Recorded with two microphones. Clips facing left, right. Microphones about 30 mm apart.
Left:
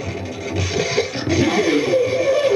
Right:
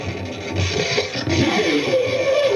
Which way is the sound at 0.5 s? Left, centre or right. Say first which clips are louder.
Even; centre.